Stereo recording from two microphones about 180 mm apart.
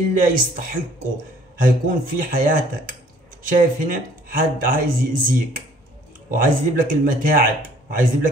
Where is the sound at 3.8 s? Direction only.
50° right (ahead or behind).